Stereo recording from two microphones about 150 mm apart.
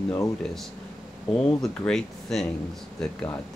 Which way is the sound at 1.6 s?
Centre (ahead or behind).